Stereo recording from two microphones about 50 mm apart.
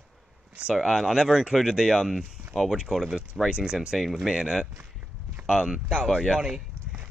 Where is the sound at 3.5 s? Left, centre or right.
Centre.